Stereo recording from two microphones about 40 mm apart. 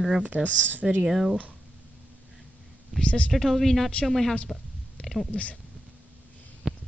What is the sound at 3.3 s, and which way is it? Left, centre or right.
Speech, centre.